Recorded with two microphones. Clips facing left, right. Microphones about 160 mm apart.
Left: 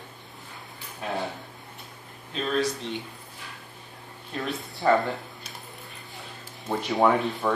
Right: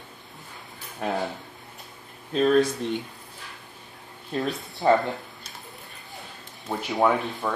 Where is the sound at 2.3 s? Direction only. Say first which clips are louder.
Right 7 dB; 45° right (ahead or behind).